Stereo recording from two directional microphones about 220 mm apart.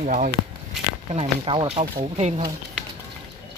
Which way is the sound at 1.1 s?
25° right (ahead or behind).